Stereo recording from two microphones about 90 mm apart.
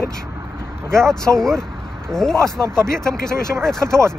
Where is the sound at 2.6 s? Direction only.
35° right (ahead or behind).